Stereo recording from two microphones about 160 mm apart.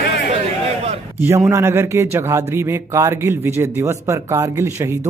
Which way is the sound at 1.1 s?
15° right (ahead or behind).